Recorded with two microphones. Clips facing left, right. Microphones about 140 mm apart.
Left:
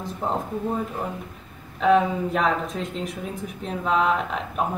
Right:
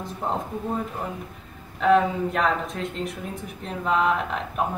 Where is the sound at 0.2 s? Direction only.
5° left (ahead or behind).